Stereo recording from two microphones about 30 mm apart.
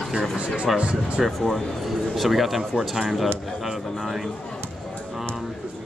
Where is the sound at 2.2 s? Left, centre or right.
Centre.